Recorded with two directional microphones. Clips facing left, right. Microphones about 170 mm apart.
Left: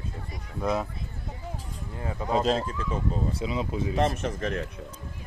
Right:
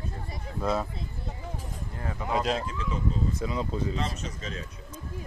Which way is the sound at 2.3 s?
35° left (ahead or behind).